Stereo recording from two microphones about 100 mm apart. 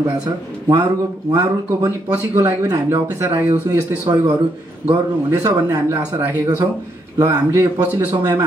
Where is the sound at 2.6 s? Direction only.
30° right (ahead or behind).